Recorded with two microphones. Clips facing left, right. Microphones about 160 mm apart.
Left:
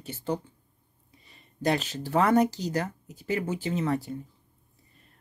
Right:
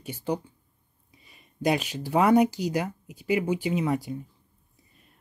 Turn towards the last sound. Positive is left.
turn(degrees=-10)  # may be behind; listen again after turning